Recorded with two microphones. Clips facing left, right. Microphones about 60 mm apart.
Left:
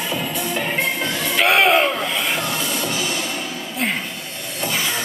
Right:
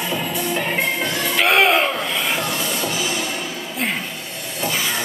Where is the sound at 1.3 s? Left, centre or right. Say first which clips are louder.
Left 1 dB; centre.